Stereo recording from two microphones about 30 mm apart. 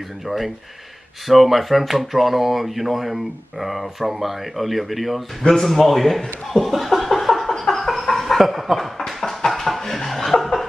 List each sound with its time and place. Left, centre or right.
1.2 s speech: centre
5.6 s chuckle: centre
8.9 s a sound: centre
10.0 s chuckle: centre